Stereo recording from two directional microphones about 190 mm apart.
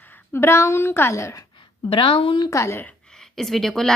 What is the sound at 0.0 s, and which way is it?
A woman's voice, 10° left (ahead or behind).